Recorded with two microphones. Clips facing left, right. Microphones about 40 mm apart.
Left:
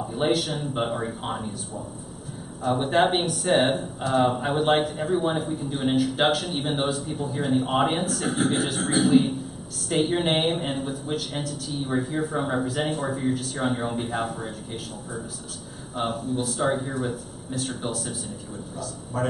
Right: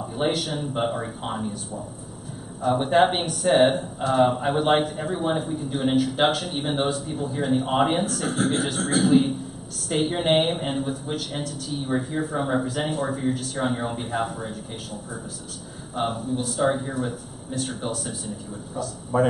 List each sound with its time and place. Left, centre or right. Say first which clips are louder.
0.0 s speech: left 1 dB; centre
2.6 s speech: right 2 dB; centre
15.9 s speech: right 1 dB; centre
19.1 s speech: right 7 dB; centre